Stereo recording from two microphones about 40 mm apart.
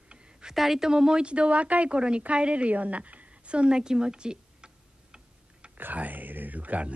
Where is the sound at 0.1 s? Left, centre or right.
Right.